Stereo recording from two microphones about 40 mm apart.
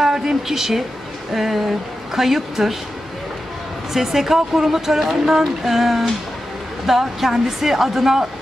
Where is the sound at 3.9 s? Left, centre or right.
Centre.